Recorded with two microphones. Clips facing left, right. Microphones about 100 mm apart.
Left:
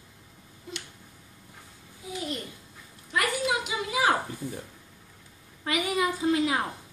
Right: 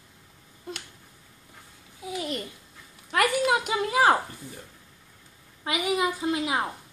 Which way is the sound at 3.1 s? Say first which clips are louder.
Right 4 dB; 55° right (ahead or behind).